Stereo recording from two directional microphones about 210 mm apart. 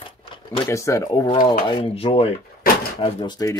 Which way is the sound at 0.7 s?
15° left (ahead or behind).